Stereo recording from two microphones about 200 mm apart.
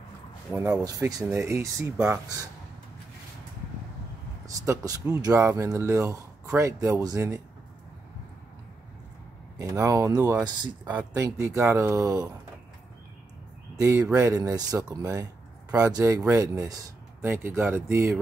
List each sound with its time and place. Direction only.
0.5 s speech: 10° right (ahead or behind)
4.5 s speech: 15° right (ahead or behind)
9.6 s speech: 15° right (ahead or behind)
13.7 s speech: 15° right (ahead or behind)